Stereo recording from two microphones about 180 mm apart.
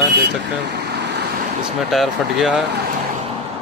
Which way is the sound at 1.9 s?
Centre (ahead or behind).